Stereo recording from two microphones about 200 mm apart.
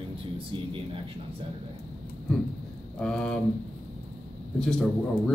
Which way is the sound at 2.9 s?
5° left (ahead or behind).